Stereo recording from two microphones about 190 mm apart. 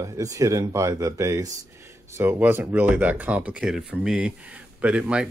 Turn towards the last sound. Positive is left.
turn(degrees=-5)  # may be behind; listen again after turning